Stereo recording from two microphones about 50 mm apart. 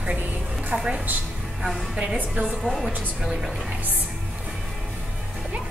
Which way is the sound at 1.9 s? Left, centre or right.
Centre.